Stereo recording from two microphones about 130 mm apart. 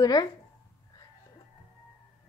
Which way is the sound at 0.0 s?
30° left (ahead or behind).